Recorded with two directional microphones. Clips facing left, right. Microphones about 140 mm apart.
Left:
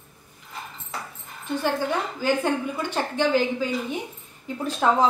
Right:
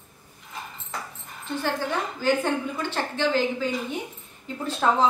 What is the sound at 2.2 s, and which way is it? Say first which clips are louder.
A woman's voice: even; 10° left (ahead or behind).